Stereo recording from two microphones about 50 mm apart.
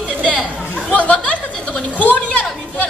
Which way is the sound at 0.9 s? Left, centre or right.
Left.